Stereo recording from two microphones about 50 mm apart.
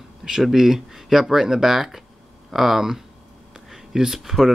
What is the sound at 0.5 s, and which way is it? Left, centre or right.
Speech, centre.